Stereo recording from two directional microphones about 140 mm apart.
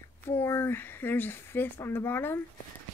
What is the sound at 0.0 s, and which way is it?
Speech, 20° left (ahead or behind).